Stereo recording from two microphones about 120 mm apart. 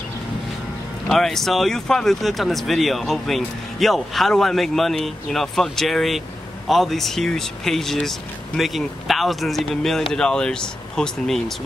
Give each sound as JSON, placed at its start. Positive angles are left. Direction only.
{"t": 1.0, "sound": "speech", "side_deg": 5}